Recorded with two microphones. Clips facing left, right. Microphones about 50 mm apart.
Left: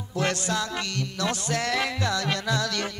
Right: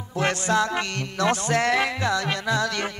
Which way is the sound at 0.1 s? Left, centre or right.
Right.